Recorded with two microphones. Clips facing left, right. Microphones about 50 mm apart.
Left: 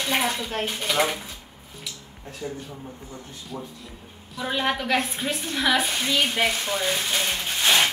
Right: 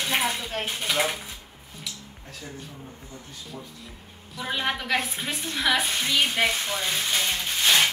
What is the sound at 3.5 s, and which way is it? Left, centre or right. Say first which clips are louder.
Speech: left 6 dB; left.